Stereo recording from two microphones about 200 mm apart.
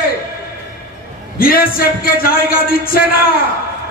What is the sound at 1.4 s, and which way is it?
A man's voice, 45° left (ahead or behind).